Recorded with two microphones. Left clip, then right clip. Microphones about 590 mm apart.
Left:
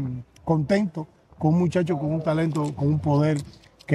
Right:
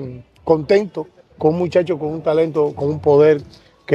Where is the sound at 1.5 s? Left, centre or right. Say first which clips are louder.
Right 6 dB; right.